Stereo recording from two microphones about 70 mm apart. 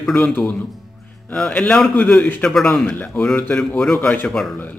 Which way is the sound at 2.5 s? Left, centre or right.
Centre.